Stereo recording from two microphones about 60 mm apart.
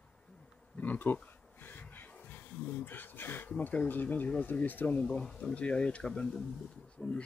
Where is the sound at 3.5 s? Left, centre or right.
Left.